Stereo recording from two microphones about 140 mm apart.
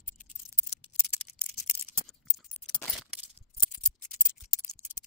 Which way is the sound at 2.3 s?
Centre (ahead or behind).